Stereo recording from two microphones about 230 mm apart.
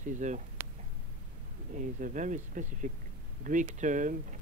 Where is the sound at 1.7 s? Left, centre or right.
Right.